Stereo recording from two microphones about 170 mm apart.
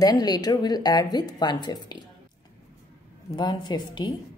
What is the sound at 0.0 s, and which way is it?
A woman's voice, 25° left (ahead or behind).